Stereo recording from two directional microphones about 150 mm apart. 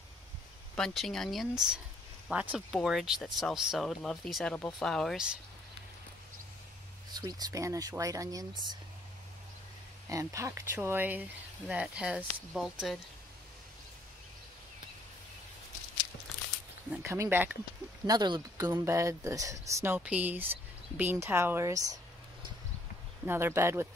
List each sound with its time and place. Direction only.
0.7 s speech: 5° left (ahead or behind)
7.2 s speech: 25° right (ahead or behind)
10.0 s speech: 20° right (ahead or behind); by 13.0 s centre (ahead or behind)
16.9 s speech: 15° right (ahead or behind)
18.0 s speech: 30° right (ahead or behind)
23.2 s speech: 15° right (ahead or behind)